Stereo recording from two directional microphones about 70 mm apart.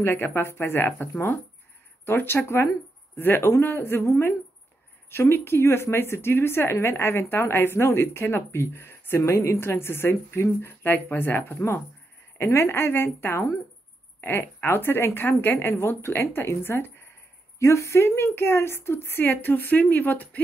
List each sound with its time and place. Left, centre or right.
0.0 s speech: left